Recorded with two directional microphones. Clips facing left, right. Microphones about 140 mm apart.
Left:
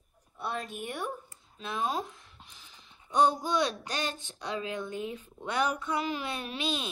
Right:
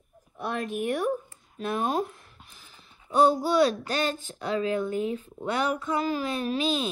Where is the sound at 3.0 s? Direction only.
35° right (ahead or behind).